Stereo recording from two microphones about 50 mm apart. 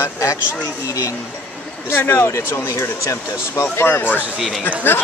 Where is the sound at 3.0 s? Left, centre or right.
Left.